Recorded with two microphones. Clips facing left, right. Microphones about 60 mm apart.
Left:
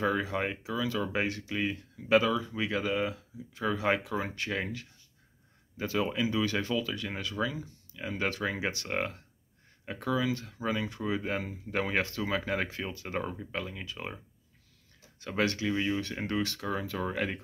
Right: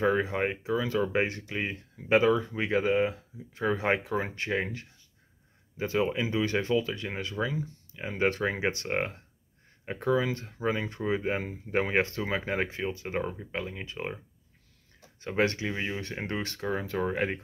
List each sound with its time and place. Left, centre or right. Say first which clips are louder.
0.0 s speech: right 3 dB; right
15.1 s speech: right 3 dB; right